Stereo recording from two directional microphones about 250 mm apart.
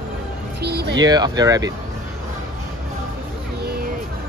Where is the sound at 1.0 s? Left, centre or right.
Centre.